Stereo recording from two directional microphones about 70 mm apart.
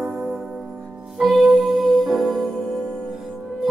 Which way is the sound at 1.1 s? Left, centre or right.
Centre.